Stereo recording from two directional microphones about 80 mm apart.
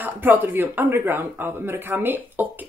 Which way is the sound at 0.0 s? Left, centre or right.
Right.